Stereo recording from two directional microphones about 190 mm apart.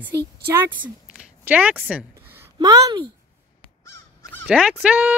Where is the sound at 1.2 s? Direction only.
5° right (ahead or behind).